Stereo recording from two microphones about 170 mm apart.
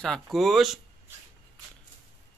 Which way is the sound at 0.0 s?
Centre (ahead or behind).